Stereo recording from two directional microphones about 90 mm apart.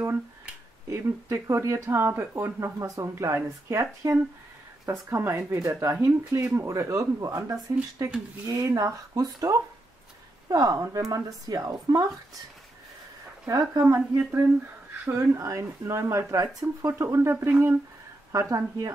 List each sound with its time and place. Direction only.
0.8 s speech: 30° right (ahead or behind)
13.5 s speech: 45° right (ahead or behind)
13.8 s speech: 25° right (ahead or behind)
15.1 s speech: 35° right (ahead or behind)
18.3 s speech: 40° right (ahead or behind)